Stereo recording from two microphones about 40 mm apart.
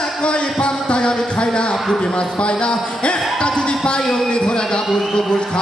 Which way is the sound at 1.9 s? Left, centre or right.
Left.